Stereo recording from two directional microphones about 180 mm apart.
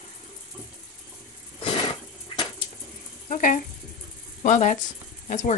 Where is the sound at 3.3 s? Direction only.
50° left (ahead or behind).